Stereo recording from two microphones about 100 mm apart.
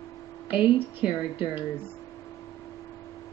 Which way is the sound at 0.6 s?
10° right (ahead or behind).